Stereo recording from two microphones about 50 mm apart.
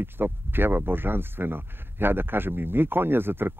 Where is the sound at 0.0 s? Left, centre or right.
Right.